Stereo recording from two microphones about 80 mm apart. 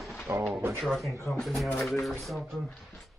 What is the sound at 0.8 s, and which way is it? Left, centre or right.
Speech, centre.